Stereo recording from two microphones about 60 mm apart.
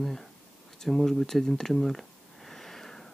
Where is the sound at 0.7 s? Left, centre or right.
Centre.